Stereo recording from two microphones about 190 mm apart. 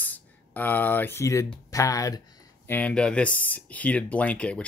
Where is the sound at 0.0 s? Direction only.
10° left (ahead or behind).